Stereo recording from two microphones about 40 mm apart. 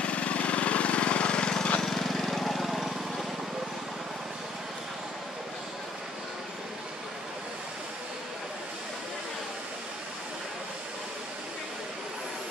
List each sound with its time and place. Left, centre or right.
0.0 s vehicle: left
1.8 s lawn mower: centre